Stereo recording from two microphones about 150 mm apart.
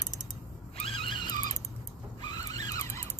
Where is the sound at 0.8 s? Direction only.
35° left (ahead or behind).